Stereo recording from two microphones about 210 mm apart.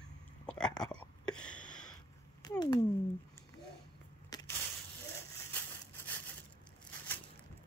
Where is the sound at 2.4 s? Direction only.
15° left (ahead or behind).